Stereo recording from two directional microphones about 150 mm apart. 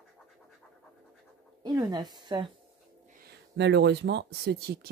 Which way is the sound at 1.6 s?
25° right (ahead or behind).